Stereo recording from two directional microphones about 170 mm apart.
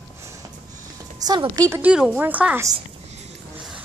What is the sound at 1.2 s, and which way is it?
Speech, 25° right (ahead or behind).